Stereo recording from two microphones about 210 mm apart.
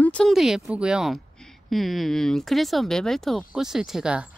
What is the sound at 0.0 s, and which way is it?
Speech, 5° left (ahead or behind).